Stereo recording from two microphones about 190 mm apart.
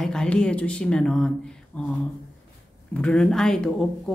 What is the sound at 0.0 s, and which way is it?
A woman's voice, 5° left (ahead or behind).